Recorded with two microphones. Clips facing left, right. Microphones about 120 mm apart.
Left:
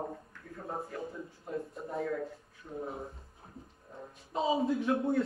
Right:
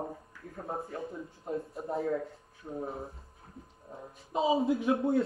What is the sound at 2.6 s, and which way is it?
Speech, 35° right (ahead or behind).